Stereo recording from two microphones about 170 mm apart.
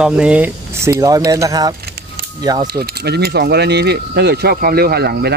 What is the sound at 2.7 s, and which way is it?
Speech, 65° right (ahead or behind).